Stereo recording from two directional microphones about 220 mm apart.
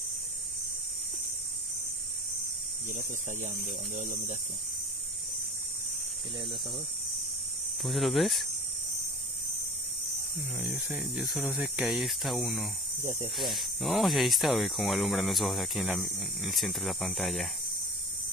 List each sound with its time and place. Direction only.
2.9 s speech: 35° right (ahead or behind)
7.8 s speech: centre (ahead or behind)
10.6 s speech: 5° right (ahead or behind)
13.0 s speech: 30° right (ahead or behind)
13.4 s speech: centre (ahead or behind)